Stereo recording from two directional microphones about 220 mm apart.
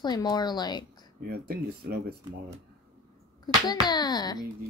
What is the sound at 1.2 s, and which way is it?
Speech, 45° right (ahead or behind).